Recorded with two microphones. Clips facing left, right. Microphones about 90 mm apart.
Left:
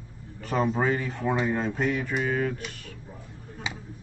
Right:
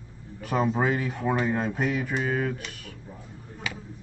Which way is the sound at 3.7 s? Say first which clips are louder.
Even; 25° left (ahead or behind).